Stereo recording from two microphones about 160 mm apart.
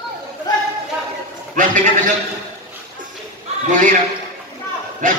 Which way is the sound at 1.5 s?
55° right (ahead or behind).